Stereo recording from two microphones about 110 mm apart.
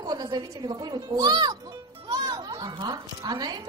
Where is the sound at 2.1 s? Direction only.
35° right (ahead or behind).